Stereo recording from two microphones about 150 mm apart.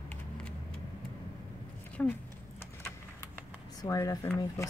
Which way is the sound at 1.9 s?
10° left (ahead or behind).